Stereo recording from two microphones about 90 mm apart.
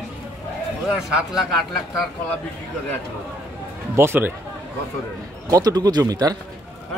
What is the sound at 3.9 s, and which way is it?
Speech, 25° right (ahead or behind).